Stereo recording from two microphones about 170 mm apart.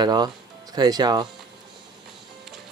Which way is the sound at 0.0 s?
25° right (ahead or behind).